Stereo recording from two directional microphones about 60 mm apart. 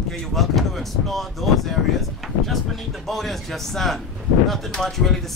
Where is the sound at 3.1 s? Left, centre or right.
Centre.